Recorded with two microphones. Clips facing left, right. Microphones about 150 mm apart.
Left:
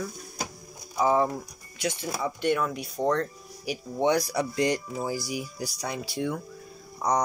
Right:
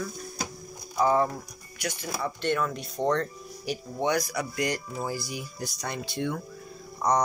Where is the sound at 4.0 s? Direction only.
30° left (ahead or behind).